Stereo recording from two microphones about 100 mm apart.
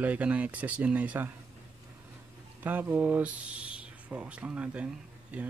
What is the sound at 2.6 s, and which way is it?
Speech, 20° right (ahead or behind).